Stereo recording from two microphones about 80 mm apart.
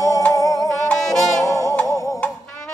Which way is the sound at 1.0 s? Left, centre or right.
Centre.